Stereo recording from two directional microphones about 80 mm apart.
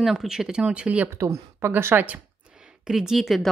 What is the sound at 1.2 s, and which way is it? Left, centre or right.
A woman's voice, right.